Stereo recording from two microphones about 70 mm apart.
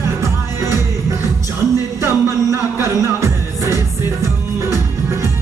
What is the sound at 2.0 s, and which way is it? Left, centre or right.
Music, right.